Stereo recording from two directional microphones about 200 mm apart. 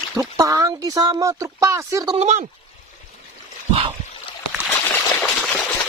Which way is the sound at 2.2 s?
35° right (ahead or behind).